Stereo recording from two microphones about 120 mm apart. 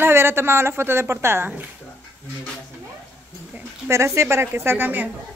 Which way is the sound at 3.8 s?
25° right (ahead or behind).